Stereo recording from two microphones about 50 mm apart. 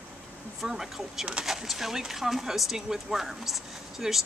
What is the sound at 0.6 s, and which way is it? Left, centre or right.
Speech, centre.